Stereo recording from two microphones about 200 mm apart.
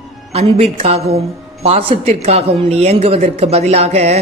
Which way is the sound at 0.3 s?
30° right (ahead or behind).